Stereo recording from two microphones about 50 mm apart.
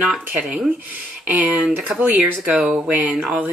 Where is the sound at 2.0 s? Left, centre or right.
Right.